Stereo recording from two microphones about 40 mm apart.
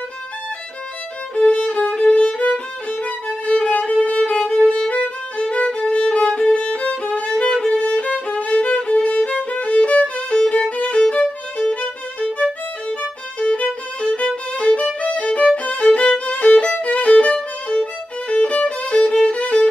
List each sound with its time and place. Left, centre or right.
1.3 s violin: left
1.7 s music: left
2.3 s violin: left
9.5 s music: left
11.0 s violin: left
13.5 s violin: left
19.2 s music: left